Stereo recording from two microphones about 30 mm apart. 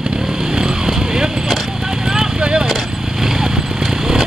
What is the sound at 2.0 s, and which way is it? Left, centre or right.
Vehicle, right.